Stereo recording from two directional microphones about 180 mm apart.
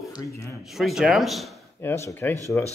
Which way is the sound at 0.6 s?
Centre (ahead or behind).